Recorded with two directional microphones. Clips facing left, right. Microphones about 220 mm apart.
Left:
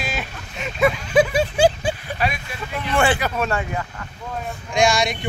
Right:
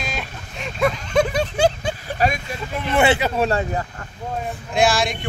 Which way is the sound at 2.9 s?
25° right (ahead or behind).